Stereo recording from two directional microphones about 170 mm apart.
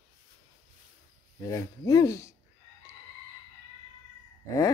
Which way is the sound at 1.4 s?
20° left (ahead or behind).